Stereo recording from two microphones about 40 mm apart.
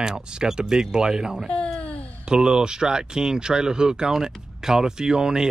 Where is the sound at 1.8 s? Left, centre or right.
Left.